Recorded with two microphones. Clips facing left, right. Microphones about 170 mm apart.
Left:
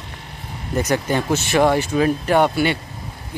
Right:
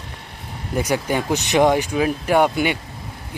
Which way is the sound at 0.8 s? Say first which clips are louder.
Left 1 dB; 10° right (ahead or behind).